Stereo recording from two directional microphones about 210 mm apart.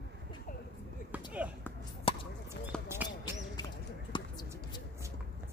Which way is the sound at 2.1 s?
25° left (ahead or behind).